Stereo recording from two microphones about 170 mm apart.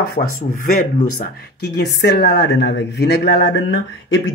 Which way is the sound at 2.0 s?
75° left (ahead or behind).